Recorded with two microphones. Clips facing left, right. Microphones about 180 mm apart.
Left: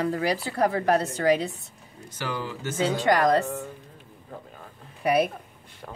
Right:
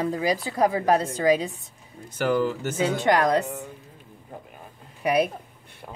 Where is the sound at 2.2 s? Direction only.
45° right (ahead or behind).